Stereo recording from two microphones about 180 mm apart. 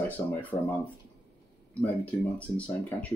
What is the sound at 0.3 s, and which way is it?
Speech, 10° left (ahead or behind).